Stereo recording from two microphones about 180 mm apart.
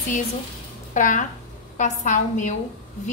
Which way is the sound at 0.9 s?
45° left (ahead or behind).